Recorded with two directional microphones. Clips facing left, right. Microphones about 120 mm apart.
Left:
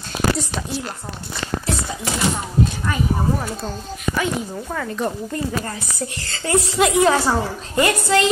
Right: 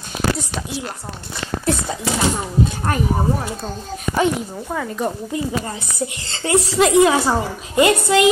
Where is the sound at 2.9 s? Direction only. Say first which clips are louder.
Right 3 dB; 55° right (ahead or behind).